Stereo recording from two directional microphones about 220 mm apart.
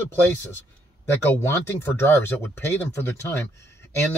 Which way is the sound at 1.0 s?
10° left (ahead or behind).